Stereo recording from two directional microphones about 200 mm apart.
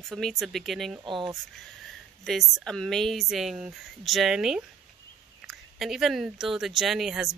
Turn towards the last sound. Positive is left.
turn(degrees=0)  # may be behind; listen again after turning